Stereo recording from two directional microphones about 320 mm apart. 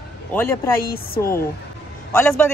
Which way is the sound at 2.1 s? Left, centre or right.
Centre.